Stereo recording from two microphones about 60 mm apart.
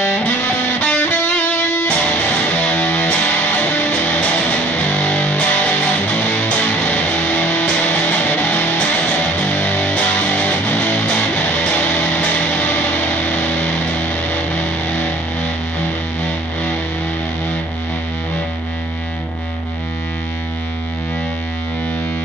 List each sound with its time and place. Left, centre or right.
0.7 s music: centre